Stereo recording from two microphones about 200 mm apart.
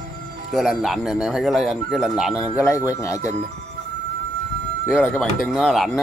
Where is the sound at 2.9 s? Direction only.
15° left (ahead or behind).